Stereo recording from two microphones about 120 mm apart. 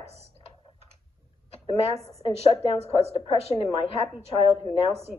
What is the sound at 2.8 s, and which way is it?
Speech, 60° left (ahead or behind).